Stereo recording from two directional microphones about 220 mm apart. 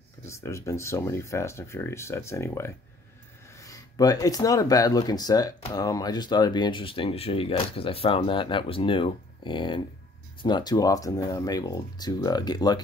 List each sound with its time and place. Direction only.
0.3 s speech: 15° left (ahead or behind)